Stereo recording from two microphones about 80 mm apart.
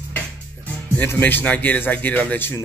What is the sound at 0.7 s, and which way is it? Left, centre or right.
Speech, left.